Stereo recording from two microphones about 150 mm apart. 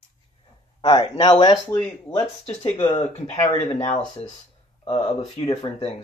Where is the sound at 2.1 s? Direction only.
40° left (ahead or behind).